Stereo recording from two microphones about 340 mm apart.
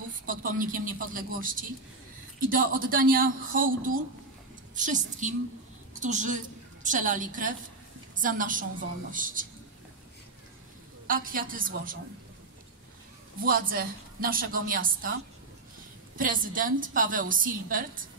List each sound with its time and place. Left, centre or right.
0.3 s a woman's voice: right
11.1 s a woman's voice: right
13.4 s a woman's voice: right
16.2 s a woman's voice: right